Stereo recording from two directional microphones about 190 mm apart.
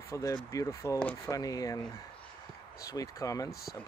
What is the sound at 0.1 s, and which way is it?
Speech, 20° left (ahead or behind).